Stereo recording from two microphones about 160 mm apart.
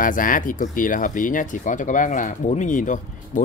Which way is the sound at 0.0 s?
60° left (ahead or behind).